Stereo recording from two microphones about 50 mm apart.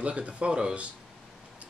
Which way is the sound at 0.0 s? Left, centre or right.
Right.